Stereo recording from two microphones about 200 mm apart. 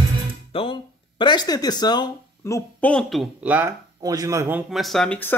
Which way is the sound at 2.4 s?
5° left (ahead or behind).